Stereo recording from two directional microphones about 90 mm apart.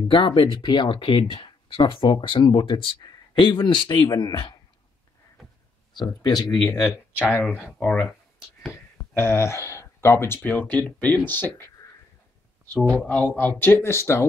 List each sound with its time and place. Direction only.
0.1 s speech: 70° left (ahead or behind)
3.0 s speech: 55° left (ahead or behind)
5.9 s speech: 50° left (ahead or behind)
6.5 s speech: 25° left (ahead or behind)
13.0 s speech: 15° left (ahead or behind); by 14.2 s 30° left (ahead or behind)